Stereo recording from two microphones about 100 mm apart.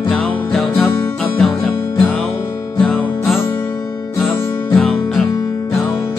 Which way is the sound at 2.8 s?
Centre (ahead or behind).